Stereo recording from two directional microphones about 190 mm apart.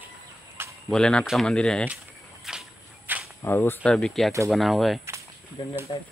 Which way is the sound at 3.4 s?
10° left (ahead or behind).